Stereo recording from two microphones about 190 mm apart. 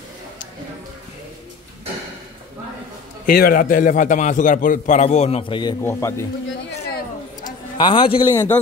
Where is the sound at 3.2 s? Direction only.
50° left (ahead or behind); by 5.7 s 25° left (ahead or behind).